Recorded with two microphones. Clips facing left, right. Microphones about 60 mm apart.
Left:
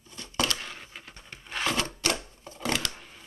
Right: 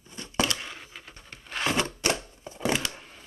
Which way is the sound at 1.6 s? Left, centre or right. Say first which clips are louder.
Right 2 dB; right.